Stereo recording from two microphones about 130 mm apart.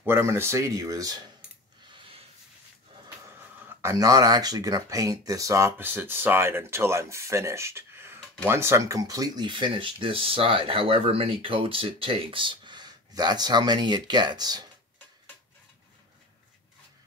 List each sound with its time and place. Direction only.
0.0 s speech: 20° right (ahead or behind)
3.6 s speech: 25° right (ahead or behind)